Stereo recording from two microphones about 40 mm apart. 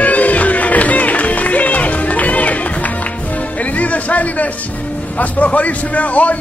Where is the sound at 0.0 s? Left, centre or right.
Left.